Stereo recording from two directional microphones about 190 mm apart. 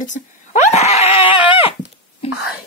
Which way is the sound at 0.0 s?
40° left (ahead or behind).